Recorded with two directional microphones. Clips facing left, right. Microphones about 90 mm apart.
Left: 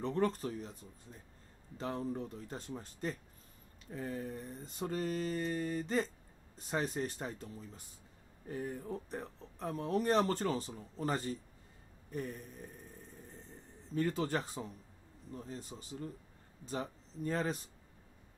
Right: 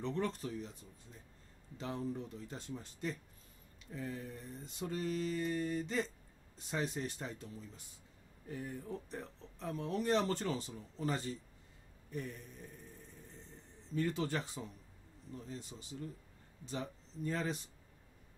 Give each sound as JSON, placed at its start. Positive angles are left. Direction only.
{"t": 0.0, "sound": "speech", "side_deg": 45}
{"t": 1.8, "sound": "speech", "side_deg": 45}
{"t": 13.9, "sound": "speech", "side_deg": 45}